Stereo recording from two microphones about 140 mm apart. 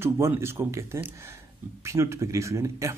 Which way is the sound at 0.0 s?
20° right (ahead or behind).